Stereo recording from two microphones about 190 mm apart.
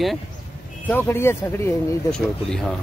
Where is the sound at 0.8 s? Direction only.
10° left (ahead or behind).